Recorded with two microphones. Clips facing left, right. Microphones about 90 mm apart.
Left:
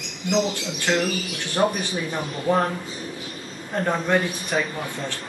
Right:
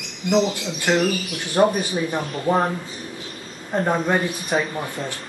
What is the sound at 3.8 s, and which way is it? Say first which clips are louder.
Speech: even; 15° right (ahead or behind).